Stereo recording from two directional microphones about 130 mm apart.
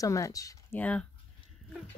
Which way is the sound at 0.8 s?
10° left (ahead or behind).